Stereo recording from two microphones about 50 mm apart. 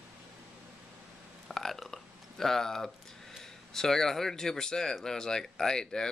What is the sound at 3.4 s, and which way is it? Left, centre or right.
A man's voice, centre.